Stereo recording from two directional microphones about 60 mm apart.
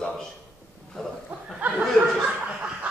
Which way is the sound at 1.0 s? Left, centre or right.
Centre.